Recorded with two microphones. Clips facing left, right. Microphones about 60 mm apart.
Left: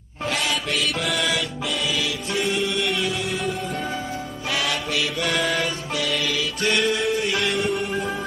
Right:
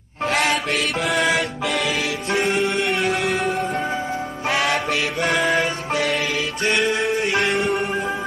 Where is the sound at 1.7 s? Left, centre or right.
Right.